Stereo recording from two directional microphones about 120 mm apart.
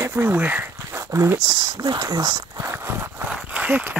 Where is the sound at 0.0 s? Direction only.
20° right (ahead or behind).